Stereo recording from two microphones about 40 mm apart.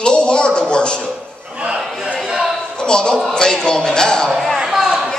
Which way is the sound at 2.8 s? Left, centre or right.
Left.